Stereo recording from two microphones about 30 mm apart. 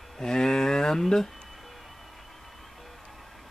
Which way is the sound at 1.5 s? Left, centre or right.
Centre.